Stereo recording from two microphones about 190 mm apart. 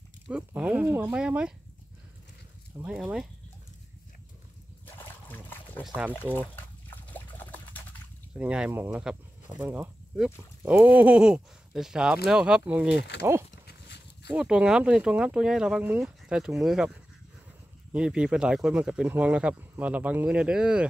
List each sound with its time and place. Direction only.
0.3 s speech: 5° right (ahead or behind)
2.8 s speech: 5° right (ahead or behind)
4.8 s trickle: 10° left (ahead or behind)
6.3 s liquid: 10° left (ahead or behind)
8.3 s speech: 5° right (ahead or behind)
12.9 s speech: 65° left (ahead or behind)
13.2 s speech: 15° right (ahead or behind)
13.7 s dog: 60° left (ahead or behind)
14.3 s speech: 5° right (ahead or behind)